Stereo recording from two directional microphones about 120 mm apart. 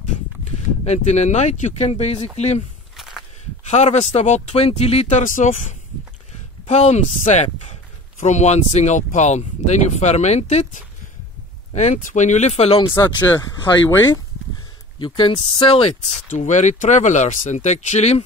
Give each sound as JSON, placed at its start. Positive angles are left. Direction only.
{"t": 0.8, "sound": "speech", "side_deg": 65}
{"t": 3.0, "sound": "a sound", "side_deg": 0}
{"t": 3.6, "sound": "speech", "side_deg": 70}
{"t": 6.7, "sound": "speech", "side_deg": 65}
{"t": 12.9, "sound": "speech", "side_deg": 20}
{"t": 15.0, "sound": "speech", "side_deg": 40}
{"t": 15.3, "sound": "speech", "side_deg": 55}
{"t": 16.3, "sound": "speech", "side_deg": 80}